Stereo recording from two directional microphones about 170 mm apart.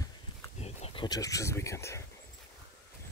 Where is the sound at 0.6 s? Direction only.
40° left (ahead or behind).